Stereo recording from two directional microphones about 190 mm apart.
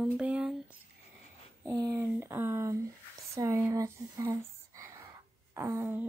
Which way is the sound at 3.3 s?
15° right (ahead or behind).